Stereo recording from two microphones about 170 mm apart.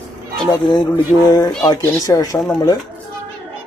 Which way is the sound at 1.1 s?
20° left (ahead or behind).